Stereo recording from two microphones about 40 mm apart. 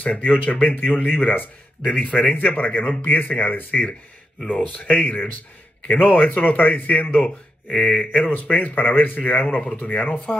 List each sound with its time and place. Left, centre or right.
0.0 s speech: left
1.9 s speech: left
2.2 s speech: left
7.2 s speech: left